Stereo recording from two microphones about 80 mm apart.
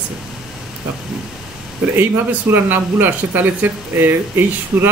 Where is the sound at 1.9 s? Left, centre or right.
Right.